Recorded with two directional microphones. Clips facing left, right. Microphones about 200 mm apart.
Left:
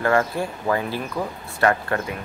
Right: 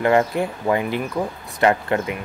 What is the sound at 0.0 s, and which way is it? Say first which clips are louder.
Speech: right 3 dB; 20° right (ahead or behind).